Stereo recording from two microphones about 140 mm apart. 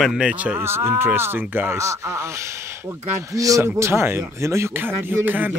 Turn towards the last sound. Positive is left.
turn(degrees=-10)  # may be behind; listen again after turning